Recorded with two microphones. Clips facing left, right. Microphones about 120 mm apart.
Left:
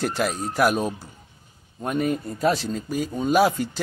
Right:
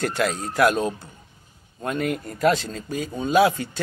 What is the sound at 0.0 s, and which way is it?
Speech, 90° right.